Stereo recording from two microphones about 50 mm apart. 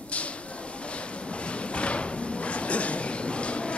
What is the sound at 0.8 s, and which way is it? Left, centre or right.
Drawer open or close, left.